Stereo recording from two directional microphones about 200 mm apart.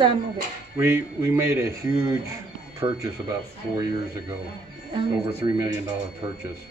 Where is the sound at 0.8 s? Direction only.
10° right (ahead or behind).